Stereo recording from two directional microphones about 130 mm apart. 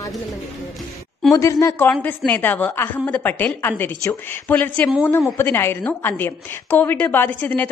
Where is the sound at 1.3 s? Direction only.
25° left (ahead or behind).